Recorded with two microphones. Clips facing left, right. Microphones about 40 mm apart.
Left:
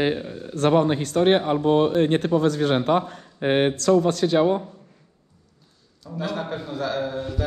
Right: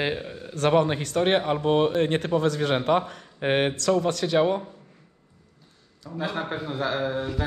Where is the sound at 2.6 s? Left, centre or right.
Right.